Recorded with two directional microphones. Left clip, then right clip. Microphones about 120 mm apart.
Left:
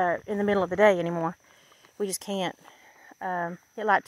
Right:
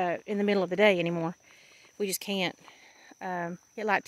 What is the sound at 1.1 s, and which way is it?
Speech, 50° right (ahead or behind).